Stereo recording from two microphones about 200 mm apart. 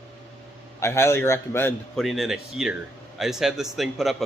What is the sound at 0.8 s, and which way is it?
A man's voice, 15° left (ahead or behind).